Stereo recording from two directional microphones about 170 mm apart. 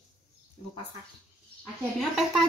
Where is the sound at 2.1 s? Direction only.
Centre (ahead or behind).